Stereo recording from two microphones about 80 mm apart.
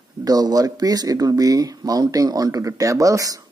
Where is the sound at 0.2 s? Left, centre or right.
Right.